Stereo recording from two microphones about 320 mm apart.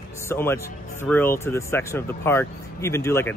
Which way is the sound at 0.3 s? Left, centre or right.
Centre.